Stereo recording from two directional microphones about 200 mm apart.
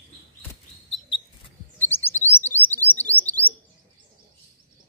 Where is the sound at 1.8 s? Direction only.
10° left (ahead or behind).